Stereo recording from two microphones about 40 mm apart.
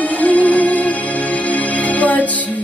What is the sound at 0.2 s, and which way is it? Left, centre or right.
Music, left.